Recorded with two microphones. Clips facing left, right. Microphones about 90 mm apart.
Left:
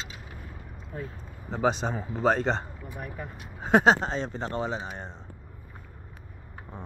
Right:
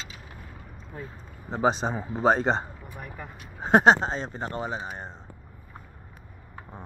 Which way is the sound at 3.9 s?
20° right (ahead or behind).